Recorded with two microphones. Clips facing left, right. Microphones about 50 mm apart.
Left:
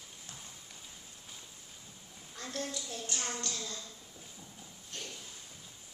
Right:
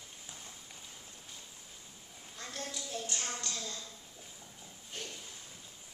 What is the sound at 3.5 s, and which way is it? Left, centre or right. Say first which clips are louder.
Speech: even; centre.